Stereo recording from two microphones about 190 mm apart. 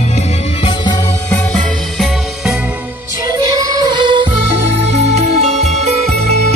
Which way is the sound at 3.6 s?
20° right (ahead or behind).